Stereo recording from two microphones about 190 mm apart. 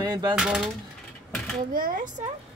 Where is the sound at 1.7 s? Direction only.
50° right (ahead or behind).